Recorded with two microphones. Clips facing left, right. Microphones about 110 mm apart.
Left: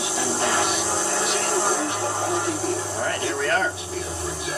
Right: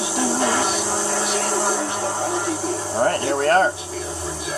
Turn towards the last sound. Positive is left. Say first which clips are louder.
# right 6 dB
turn(degrees=-45)  # may be behind; listen again after turning